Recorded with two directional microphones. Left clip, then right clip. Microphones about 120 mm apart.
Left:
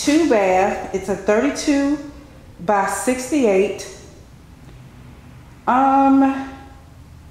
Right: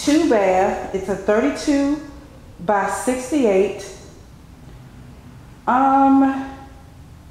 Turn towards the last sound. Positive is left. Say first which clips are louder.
# even
turn(degrees=20)  # may be behind; listen again after turning